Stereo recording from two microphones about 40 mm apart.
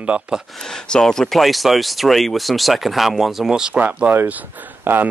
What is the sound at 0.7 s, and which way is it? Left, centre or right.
Speech, left.